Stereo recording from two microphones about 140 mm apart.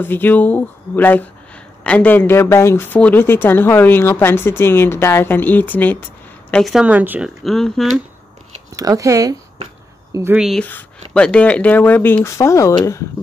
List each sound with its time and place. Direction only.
0.0 s speech: 15° left (ahead or behind)
6.5 s speech: centre (ahead or behind)
7.4 s speech: centre (ahead or behind)
8.7 s speech: 25° right (ahead or behind)
10.3 s speech: 5° right (ahead or behind)
10.6 s speech: 10° left (ahead or behind)